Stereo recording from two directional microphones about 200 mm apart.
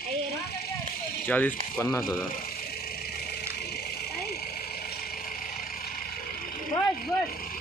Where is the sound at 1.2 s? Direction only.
10° left (ahead or behind).